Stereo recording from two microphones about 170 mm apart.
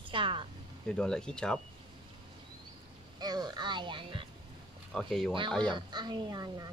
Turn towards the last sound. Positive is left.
turn(degrees=-20)  # may be behind; listen again after turning